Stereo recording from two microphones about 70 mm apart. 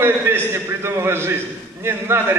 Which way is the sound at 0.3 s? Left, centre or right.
Right.